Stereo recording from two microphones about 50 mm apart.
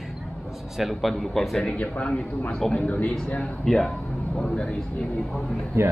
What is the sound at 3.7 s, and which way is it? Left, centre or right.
Speech, centre.